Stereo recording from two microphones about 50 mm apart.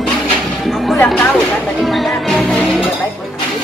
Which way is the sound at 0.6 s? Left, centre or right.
Centre.